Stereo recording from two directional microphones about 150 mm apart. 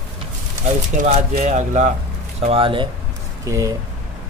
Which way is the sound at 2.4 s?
35° right (ahead or behind).